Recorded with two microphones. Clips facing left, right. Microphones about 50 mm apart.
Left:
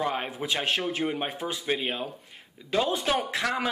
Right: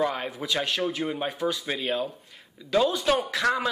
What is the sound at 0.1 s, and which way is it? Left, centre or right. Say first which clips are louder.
A man's voice: even; left.